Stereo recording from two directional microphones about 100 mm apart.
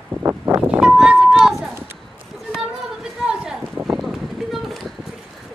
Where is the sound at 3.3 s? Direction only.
10° right (ahead or behind).